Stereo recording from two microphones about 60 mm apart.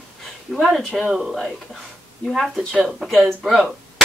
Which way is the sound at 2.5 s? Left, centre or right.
Centre.